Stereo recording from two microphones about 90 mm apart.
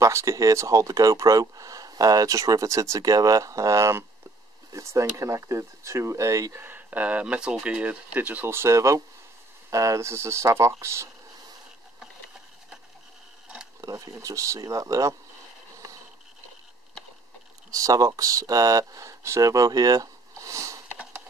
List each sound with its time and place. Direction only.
0.0 s speech: 35° right (ahead or behind)
6.6 s speech: 20° right (ahead or behind)
13.7 s speech: 40° right (ahead or behind)
17.6 s speech: 40° right (ahead or behind)